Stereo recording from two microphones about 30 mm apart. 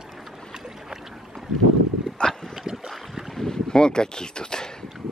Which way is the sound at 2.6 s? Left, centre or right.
Centre.